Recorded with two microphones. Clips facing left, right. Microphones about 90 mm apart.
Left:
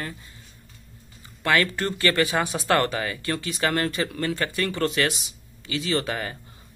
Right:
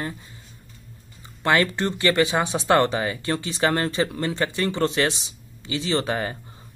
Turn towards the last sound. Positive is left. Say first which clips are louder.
# right 2 dB
turn(degrees=-30)  # may be behind; listen again after turning